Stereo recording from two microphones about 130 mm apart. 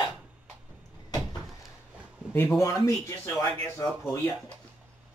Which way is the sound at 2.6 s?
25° left (ahead or behind).